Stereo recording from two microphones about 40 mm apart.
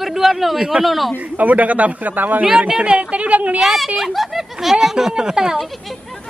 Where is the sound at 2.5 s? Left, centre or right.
Right.